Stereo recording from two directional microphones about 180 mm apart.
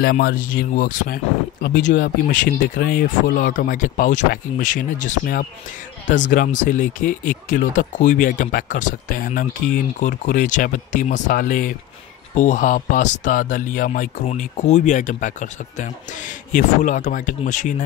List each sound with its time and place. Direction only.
0.0 s speech: 55° left (ahead or behind)
16.5 s speech: 45° left (ahead or behind)